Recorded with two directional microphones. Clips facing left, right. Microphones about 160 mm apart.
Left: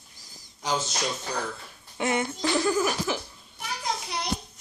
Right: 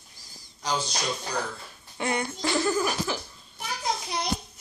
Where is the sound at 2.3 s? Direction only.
5° left (ahead or behind).